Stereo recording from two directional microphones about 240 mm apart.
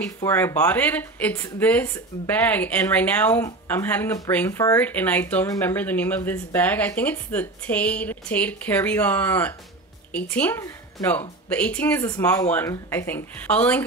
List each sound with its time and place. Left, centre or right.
0.2 s speech: centre